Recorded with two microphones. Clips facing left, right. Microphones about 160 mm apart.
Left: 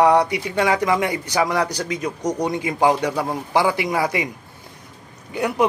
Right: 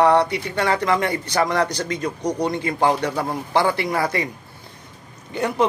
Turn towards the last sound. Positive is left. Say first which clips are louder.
# left 1 dB
turn(degrees=10)  # may be behind; listen again after turning